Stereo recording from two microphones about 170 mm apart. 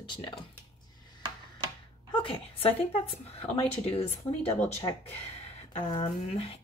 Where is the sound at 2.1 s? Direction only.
30° left (ahead or behind).